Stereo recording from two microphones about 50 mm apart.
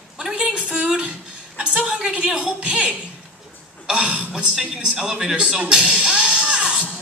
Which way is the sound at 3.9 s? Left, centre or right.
Right.